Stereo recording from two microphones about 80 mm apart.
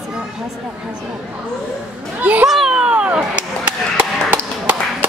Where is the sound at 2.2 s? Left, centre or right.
Centre.